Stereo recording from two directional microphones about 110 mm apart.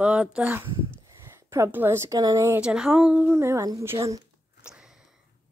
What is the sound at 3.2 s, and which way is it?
Speech, 25° right (ahead or behind).